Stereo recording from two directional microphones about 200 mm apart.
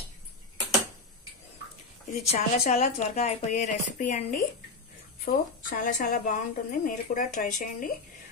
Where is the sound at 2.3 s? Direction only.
35° left (ahead or behind).